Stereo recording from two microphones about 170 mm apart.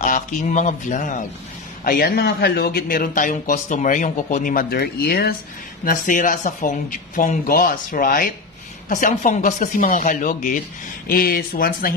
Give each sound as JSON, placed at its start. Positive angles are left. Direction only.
{"t": 0.0, "sound": "speech", "side_deg": 45}
{"t": 1.9, "sound": "speech", "side_deg": 60}
{"t": 5.9, "sound": "speech", "side_deg": 50}
{"t": 11.1, "sound": "speech", "side_deg": 60}